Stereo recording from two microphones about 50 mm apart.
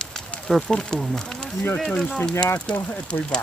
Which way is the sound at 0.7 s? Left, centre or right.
Centre.